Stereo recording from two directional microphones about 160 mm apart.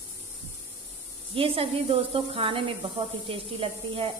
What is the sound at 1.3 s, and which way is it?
A woman's voice, 35° right (ahead or behind).